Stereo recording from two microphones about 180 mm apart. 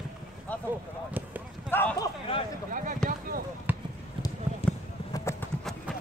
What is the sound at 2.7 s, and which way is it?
Speech, 45° right (ahead or behind).